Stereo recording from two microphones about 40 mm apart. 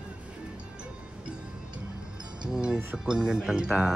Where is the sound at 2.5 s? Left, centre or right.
Centre.